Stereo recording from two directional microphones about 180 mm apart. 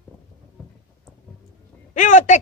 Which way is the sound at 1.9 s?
45° left (ahead or behind).